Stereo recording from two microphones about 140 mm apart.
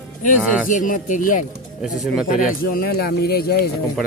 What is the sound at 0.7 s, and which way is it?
Speech, 70° left (ahead or behind).